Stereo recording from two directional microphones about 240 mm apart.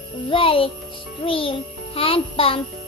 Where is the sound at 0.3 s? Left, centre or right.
Left.